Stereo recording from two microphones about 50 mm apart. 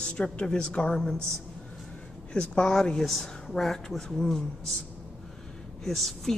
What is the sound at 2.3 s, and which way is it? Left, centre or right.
Speech, left.